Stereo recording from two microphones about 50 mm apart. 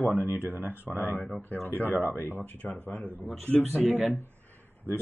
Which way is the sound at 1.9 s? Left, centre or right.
Right.